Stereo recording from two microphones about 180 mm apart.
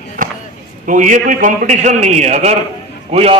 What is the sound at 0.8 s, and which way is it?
A man's voice, 45° right (ahead or behind).